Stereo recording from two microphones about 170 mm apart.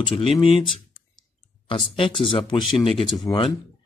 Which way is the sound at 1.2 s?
30° left (ahead or behind).